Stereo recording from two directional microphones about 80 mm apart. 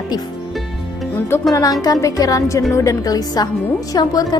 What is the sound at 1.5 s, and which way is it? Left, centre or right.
A woman's voice, left.